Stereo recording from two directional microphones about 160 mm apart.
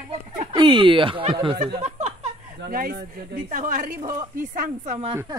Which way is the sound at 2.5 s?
70° right (ahead or behind).